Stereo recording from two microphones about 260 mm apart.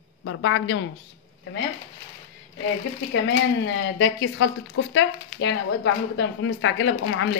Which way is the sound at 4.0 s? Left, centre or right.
Left.